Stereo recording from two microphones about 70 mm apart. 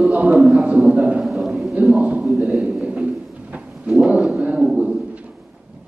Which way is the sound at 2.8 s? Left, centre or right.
Centre.